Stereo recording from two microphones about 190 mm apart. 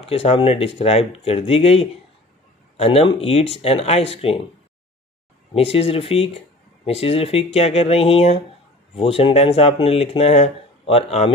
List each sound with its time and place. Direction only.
0.0 s speech: 30° left (ahead or behind)
5.5 s speech: 30° left (ahead or behind)